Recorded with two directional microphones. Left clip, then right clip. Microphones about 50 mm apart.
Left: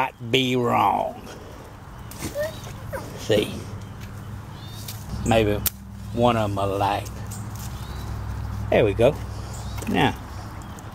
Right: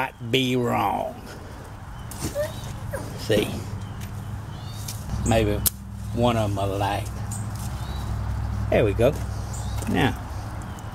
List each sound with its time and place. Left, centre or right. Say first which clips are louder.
0.0 s speech: left 2 dB; left
3.2 s speech: left 1 dB; left
5.3 s a man's voice: left 2 dB; left
6.1 s a man's voice: left 2 dB; centre
8.6 s a man's voice: left 2 dB; left